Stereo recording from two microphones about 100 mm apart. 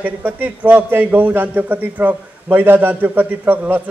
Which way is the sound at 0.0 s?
15° right (ahead or behind).